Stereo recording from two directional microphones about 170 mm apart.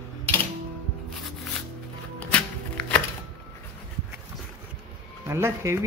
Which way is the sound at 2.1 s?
10° left (ahead or behind).